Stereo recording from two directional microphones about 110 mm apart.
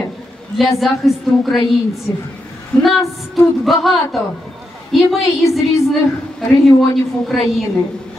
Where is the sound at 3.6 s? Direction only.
Centre (ahead or behind).